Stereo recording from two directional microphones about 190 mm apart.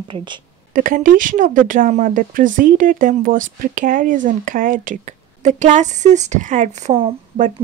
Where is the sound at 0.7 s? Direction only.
45° right (ahead or behind).